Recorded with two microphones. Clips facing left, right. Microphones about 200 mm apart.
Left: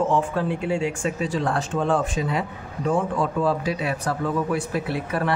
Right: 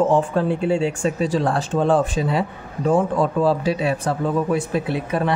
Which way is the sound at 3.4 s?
30° right (ahead or behind).